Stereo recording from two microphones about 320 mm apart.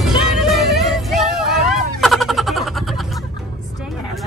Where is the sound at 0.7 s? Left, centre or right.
Centre.